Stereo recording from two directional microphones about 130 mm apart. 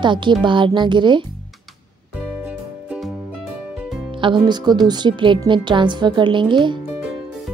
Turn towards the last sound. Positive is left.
turn(degrees=-35)  # may be behind; listen again after turning